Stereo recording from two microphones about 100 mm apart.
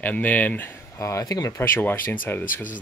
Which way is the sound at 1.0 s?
30° left (ahead or behind).